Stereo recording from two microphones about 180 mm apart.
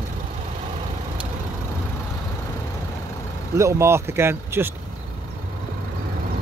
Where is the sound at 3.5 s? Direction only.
15° right (ahead or behind).